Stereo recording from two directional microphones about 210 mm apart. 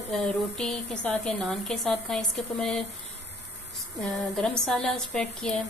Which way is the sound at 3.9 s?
Centre (ahead or behind).